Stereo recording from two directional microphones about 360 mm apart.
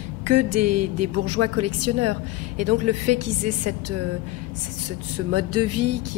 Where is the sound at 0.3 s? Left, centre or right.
Right.